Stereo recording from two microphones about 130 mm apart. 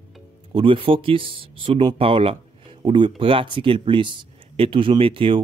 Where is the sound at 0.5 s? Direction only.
45° right (ahead or behind).